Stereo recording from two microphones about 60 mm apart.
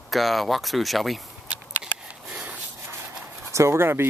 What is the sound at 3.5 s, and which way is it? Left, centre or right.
Speech, right.